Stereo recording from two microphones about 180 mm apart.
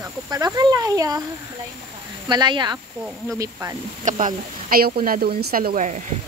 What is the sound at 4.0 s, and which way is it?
Speech, 45° right (ahead or behind).